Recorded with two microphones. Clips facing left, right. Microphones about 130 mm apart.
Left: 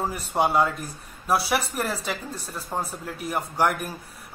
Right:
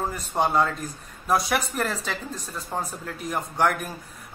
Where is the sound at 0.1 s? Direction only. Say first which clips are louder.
Left 1 dB; 10° left (ahead or behind).